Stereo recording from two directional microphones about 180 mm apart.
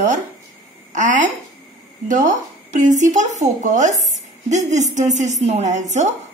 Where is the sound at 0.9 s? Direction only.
45° right (ahead or behind).